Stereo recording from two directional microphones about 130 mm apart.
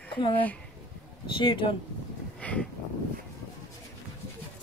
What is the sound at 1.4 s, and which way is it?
Speech, 40° left (ahead or behind).